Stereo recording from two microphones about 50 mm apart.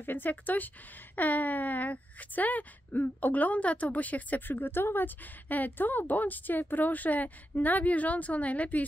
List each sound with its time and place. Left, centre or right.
0.0 s speech: left